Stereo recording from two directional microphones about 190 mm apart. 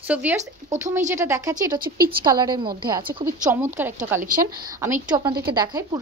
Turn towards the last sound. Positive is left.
turn(degrees=-20)  # may be behind; listen again after turning